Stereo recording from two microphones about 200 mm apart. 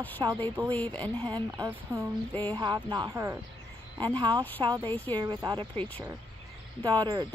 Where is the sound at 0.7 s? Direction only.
5° left (ahead or behind).